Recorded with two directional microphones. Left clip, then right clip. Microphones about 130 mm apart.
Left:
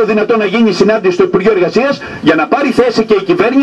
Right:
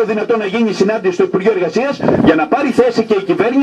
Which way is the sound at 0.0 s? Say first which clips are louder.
Left 4 dB; 35° left (ahead or behind).